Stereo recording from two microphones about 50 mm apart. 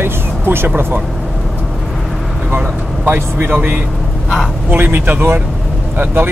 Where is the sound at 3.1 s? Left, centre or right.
Right.